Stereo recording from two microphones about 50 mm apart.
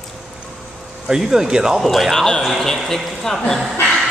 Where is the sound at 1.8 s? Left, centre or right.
Centre.